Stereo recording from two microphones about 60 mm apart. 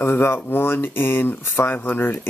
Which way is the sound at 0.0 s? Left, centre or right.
Left.